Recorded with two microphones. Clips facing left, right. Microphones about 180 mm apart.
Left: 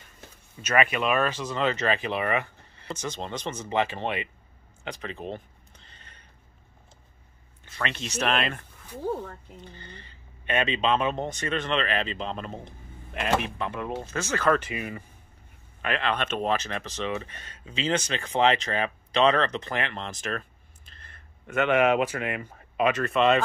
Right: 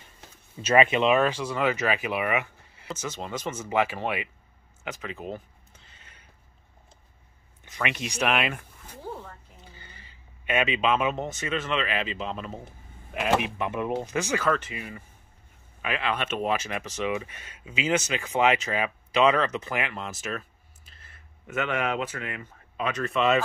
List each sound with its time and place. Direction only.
0.6 s speech: 30° right (ahead or behind); by 4.3 s 10° right (ahead or behind)
4.8 s a sound: 5° right (ahead or behind)
7.6 s speech: 15° right (ahead or behind)
9.7 s speech: 10° right (ahead or behind)
13.6 s speech: 20° right (ahead or behind)
14.6 s speech: 15° left (ahead or behind)
15.8 s speech: 5° right (ahead or behind)
21.6 s speech: 65° left (ahead or behind)
22.9 s speech: centre (ahead or behind)